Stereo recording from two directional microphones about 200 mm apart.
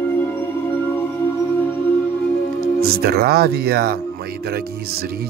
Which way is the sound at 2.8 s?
50° right (ahead or behind).